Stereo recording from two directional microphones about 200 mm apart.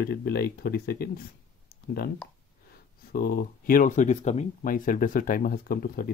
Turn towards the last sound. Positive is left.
turn(degrees=45)  # may be behind; listen again after turning